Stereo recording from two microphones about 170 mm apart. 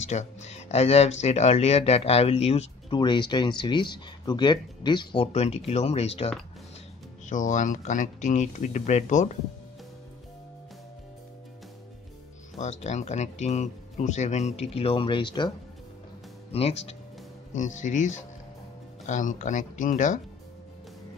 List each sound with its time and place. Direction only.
0.0 s speech: 45° left (ahead or behind)
7.2 s speech: 45° left (ahead or behind)
12.5 s speech: 40° left (ahead or behind)
16.5 s speech: 35° left (ahead or behind)